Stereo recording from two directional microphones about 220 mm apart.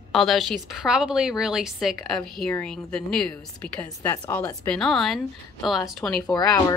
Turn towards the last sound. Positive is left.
turn(degrees=15)  # may be behind; listen again after turning